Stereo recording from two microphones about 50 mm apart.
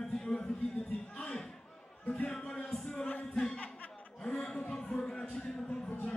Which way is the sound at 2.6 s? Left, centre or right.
Centre.